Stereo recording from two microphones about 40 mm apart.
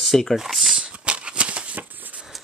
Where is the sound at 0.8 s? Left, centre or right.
Right.